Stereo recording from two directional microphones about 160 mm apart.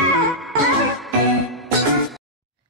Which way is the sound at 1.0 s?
Centre (ahead or behind).